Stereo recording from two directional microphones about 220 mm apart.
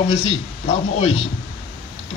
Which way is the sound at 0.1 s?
25° left (ahead or behind).